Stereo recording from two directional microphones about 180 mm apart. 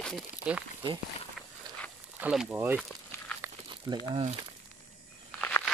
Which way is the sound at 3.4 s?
15° right (ahead or behind).